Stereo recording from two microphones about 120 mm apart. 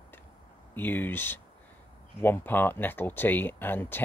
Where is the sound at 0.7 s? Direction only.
15° left (ahead or behind).